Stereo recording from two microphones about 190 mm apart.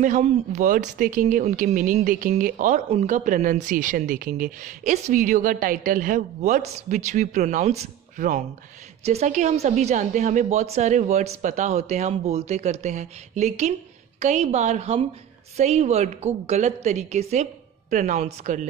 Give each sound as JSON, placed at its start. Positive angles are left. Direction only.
{"t": 0.0, "sound": "a woman's voice", "side_deg": -40}